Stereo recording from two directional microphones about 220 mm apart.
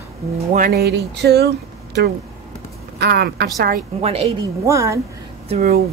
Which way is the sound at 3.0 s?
50° right (ahead or behind).